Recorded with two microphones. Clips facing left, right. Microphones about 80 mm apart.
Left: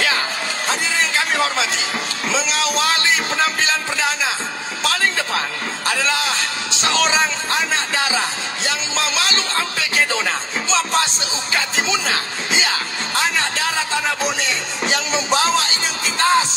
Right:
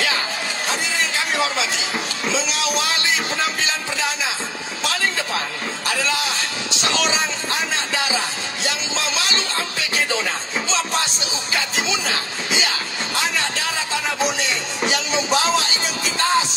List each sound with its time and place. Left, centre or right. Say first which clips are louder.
0.7 s a sound: left 3 dB; left
2.3 s speech: left 3 dB; left
5.0 s music: left 2 dB; left
5.9 s speech: left 3 dB; left
11.5 s music: left 3 dB; left